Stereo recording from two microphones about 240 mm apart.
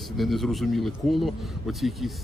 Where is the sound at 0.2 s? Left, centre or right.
Centre.